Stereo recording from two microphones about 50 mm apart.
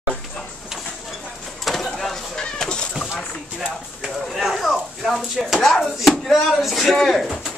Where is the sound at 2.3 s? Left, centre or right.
Centre.